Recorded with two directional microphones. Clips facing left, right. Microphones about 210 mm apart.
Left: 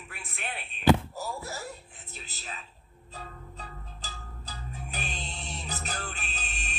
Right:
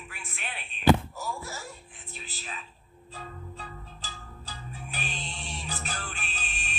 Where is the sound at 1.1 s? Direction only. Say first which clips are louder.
Left 1 dB; 35° left (ahead or behind).